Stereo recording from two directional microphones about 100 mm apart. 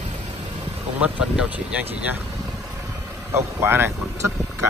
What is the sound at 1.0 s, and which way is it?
Speech, 10° right (ahead or behind).